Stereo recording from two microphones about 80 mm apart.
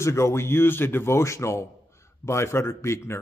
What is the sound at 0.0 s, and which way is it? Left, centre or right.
A man's voice, left.